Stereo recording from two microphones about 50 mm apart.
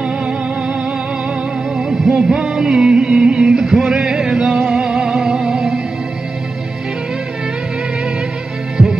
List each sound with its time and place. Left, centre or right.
1.8 s music: centre